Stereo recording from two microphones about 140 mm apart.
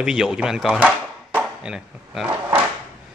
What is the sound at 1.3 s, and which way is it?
Chop, 5° right (ahead or behind).